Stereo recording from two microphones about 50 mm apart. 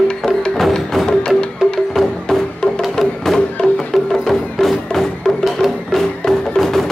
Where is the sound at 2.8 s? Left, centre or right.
Centre.